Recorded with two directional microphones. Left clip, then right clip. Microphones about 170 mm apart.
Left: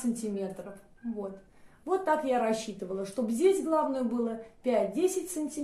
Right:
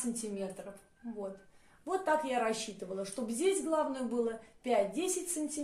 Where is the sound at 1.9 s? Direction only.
30° left (ahead or behind).